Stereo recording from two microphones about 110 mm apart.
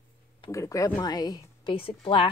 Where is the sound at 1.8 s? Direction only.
55° left (ahead or behind).